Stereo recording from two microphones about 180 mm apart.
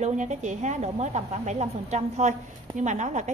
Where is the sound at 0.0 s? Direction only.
40° right (ahead or behind).